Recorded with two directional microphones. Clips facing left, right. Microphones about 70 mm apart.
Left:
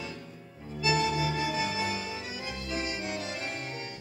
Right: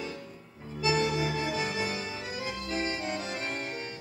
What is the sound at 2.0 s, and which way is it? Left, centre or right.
Music, right.